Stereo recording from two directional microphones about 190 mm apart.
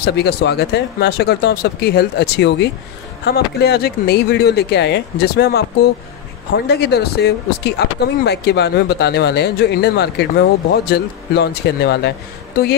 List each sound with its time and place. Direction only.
0.0 s speech: 60° left (ahead or behind)